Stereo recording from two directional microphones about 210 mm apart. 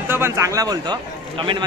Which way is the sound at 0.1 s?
15° right (ahead or behind).